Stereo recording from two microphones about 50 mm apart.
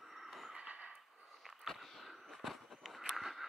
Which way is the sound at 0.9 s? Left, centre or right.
Centre.